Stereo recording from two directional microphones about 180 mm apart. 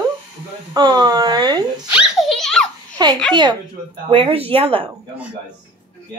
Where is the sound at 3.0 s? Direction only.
25° right (ahead or behind).